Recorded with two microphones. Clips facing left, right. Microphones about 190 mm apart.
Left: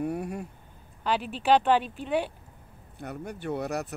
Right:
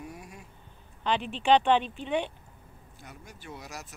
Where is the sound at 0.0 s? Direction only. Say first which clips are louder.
Left 13 dB; 60° left (ahead or behind).